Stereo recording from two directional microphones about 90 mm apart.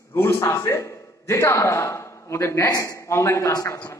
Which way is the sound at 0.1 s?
30° left (ahead or behind).